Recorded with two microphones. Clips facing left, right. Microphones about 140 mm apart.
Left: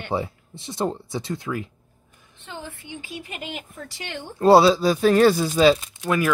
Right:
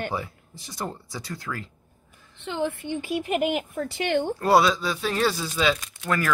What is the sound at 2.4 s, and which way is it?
Speech, 70° right (ahead or behind).